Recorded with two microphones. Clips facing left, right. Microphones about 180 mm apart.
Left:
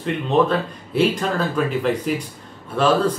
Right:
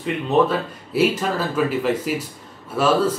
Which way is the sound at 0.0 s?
5° right (ahead or behind).